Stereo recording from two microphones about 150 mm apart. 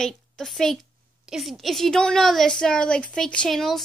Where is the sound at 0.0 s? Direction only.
5° left (ahead or behind).